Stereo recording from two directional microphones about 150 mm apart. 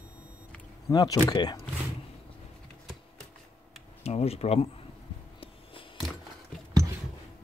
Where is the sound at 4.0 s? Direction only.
45° left (ahead or behind).